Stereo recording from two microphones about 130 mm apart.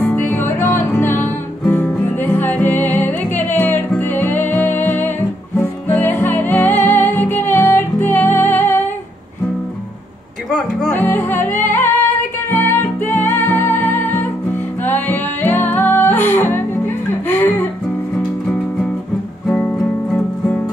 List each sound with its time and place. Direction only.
0.0 s music: 15° left (ahead or behind)
11.1 s music: 15° left (ahead or behind)